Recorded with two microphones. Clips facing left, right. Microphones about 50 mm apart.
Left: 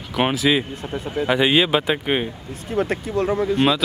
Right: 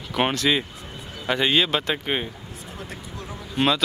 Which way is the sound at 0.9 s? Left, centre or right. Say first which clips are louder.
Left 15 dB; left.